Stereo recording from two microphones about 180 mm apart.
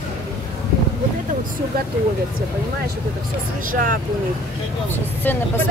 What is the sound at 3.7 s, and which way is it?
Speech, 50° right (ahead or behind).